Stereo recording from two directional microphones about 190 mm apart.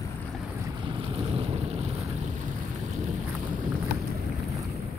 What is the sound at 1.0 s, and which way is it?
Boat, 30° right (ahead or behind).